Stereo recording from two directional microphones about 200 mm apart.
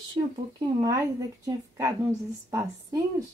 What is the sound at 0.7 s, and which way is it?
Speech, 15° right (ahead or behind).